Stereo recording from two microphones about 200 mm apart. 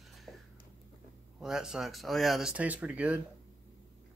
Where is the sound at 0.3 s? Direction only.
Centre (ahead or behind).